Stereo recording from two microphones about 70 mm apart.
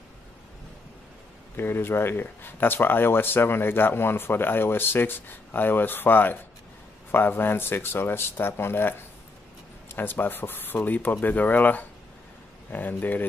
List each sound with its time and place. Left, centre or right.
1.6 s speech: left